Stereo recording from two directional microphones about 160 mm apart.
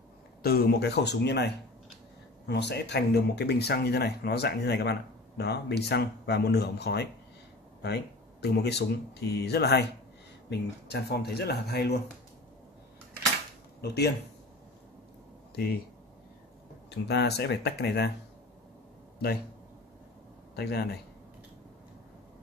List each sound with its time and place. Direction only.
0.4 s speech: 75° left (ahead or behind); by 12.0 s 90° left
13.7 s speech: 90° left
17.1 s speech: 90° left
20.5 s a man's voice: 80° left